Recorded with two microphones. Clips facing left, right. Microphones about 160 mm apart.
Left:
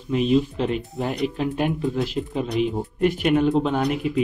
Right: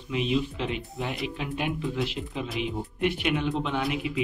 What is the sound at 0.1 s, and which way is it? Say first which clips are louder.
Speech: left 7 dB; 40° left (ahead or behind).